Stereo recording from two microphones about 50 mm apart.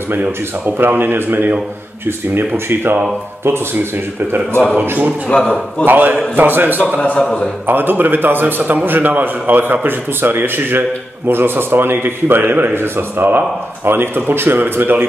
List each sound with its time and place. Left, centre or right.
0.1 s a man's voice: right
5.3 s a man's voice: left
5.9 s a man's voice: right
7.0 s a man's voice: left
7.6 s a man's voice: right